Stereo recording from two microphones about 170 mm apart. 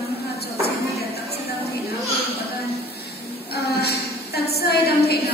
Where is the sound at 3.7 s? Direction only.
70° left (ahead or behind).